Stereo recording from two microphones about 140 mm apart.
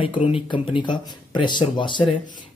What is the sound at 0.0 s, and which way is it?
Speech, 40° left (ahead or behind).